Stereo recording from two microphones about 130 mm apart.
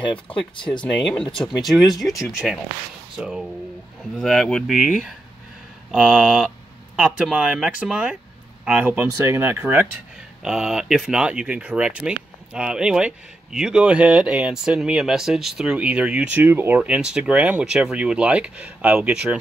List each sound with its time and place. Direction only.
0.1 s speech: 40° left (ahead or behind)
0.8 s speech: centre (ahead or behind); by 9.8 s 15° right (ahead or behind)
10.4 s speech: 5° right (ahead or behind)